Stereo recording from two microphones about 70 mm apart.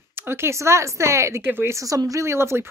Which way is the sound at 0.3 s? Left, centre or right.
Right.